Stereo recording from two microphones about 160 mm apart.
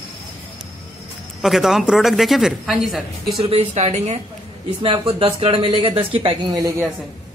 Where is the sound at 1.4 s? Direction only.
Centre (ahead or behind).